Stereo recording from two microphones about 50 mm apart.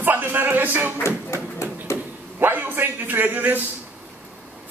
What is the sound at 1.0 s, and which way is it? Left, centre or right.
Speech, left.